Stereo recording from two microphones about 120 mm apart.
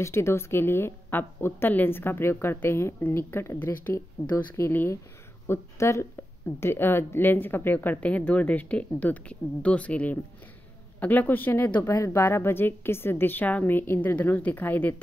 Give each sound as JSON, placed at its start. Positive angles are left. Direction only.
{"t": 0.0, "sound": "a woman's voice", "side_deg": 20}